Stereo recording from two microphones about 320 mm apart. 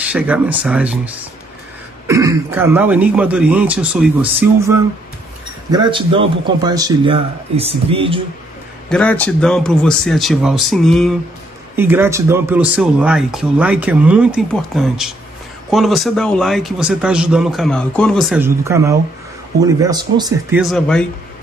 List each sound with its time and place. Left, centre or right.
0.0 s a man's voice: centre
8.8 s a man's voice: centre
20.7 s speech: centre